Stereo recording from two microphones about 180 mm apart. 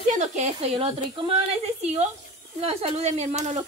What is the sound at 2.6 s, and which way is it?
Speech, 35° right (ahead or behind).